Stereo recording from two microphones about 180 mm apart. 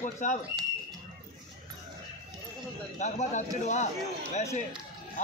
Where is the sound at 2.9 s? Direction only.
40° left (ahead or behind).